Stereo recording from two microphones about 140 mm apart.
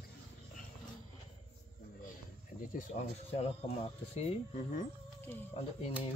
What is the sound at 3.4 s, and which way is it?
Speech, 50° left (ahead or behind).